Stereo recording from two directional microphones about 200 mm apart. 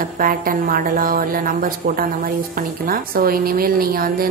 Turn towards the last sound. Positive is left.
turn(degrees=-45)  # may be behind; listen again after turning